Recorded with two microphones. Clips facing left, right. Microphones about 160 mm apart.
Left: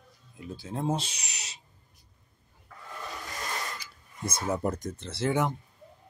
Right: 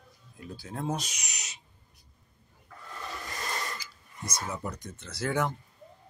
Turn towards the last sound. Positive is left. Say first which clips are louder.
# left 2 dB
turn(degrees=20)  # may be behind; listen again after turning